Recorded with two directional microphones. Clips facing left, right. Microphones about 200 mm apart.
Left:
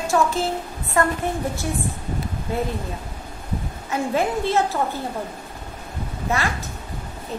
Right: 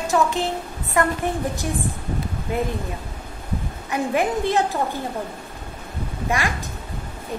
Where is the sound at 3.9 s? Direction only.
15° right (ahead or behind).